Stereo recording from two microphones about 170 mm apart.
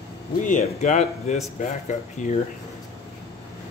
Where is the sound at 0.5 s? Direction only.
45° left (ahead or behind).